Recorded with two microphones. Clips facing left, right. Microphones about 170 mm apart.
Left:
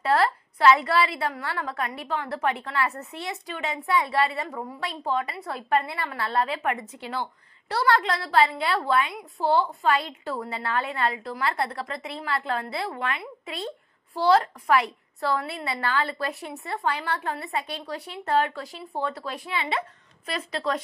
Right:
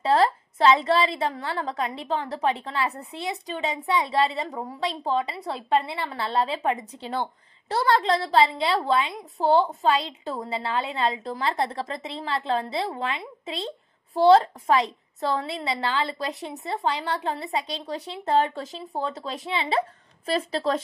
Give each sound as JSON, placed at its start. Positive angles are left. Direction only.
{"t": 0.0, "sound": "a woman's voice", "side_deg": -20}